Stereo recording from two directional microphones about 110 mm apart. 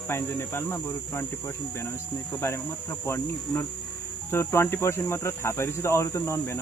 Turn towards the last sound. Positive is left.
turn(degrees=25)  # may be behind; listen again after turning